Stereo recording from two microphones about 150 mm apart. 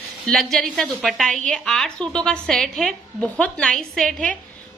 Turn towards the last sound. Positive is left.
turn(degrees=5)  # may be behind; listen again after turning